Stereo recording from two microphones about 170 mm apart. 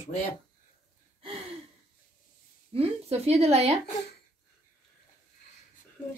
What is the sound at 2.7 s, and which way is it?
Speech, 35° right (ahead or behind).